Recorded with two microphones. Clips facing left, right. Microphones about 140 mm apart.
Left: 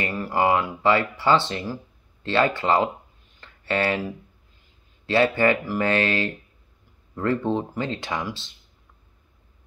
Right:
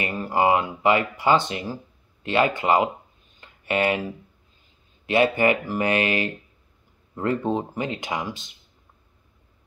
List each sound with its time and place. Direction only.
0.0 s speech: 20° right (ahead or behind)
3.3 s a sound: 15° right (ahead or behind)
5.0 s speech: 15° right (ahead or behind)